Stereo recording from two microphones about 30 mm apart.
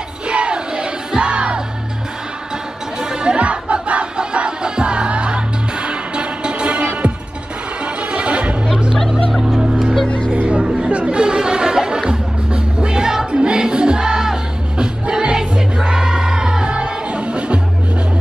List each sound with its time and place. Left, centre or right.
0.3 s music: right
3.2 s music: right
7.8 s a sound: right
9.6 s music: centre
10.0 s music: left
10.3 s music: right
10.7 s chatter: right
11.2 s chatter: right
12.0 s music: right
17.1 s music: right